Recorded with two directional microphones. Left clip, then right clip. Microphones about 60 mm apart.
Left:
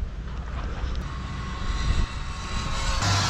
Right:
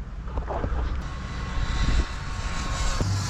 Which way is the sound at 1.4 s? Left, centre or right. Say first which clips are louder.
Right 2 dB; centre.